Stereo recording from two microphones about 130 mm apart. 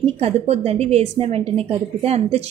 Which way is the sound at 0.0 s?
55° right (ahead or behind).